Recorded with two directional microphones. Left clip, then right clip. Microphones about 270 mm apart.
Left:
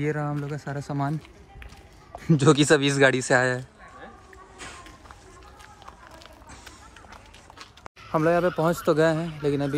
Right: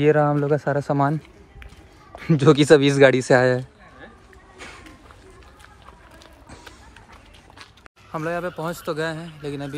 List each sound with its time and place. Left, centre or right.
0.1 s speech: centre
2.1 s speech: centre
8.1 s a man's voice: centre